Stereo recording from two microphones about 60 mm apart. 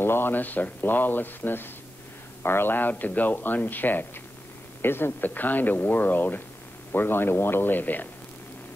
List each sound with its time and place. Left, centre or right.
0.0 s speech: left